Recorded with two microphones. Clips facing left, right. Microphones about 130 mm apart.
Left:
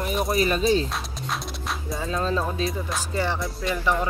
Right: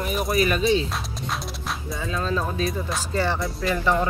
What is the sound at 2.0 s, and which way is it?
Speech, 35° left (ahead or behind).